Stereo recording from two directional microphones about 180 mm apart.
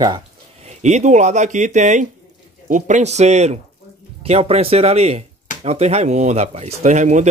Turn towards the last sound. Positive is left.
turn(degrees=-40)  # may be behind; listen again after turning